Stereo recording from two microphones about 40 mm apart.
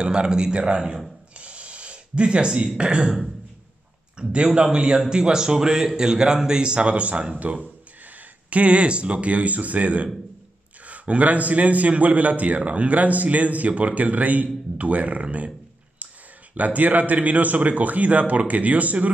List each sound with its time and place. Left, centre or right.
0.0 s speech: right
1.4 s a sound: right
4.2 s a man's voice: right
16.5 s a man's voice: right